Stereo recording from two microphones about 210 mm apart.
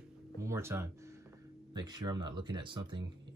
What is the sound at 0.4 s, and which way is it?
Speech, 15° right (ahead or behind).